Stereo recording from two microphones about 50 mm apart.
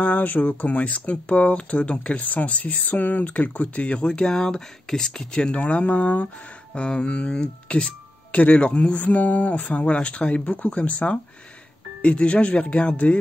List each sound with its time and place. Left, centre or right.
0.0 s speech: left